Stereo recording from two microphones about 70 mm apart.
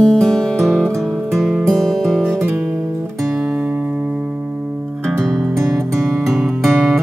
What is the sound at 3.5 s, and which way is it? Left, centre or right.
Music, right.